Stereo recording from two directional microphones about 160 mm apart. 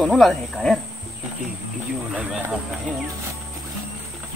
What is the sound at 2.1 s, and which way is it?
Speech, 5° right (ahead or behind).